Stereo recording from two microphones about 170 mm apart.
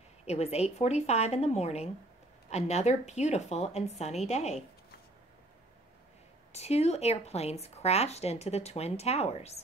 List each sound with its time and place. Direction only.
0.2 s a woman's voice: 40° left (ahead or behind)
6.5 s speech: 40° left (ahead or behind)